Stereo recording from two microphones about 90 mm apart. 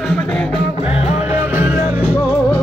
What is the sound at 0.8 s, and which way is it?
Music, 20° right (ahead or behind).